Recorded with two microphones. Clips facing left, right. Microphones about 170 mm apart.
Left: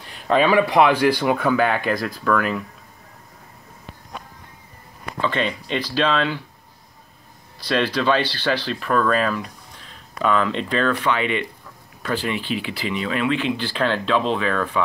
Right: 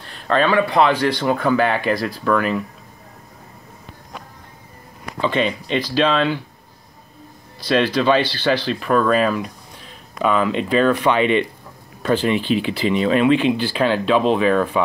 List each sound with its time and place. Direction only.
0.0 s speech: 10° left (ahead or behind)
5.2 s speech: 10° right (ahead or behind)
7.6 s speech: 10° right (ahead or behind)